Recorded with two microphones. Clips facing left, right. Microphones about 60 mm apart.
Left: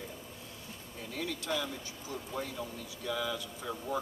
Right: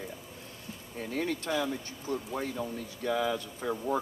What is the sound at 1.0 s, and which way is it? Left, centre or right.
Speech, right.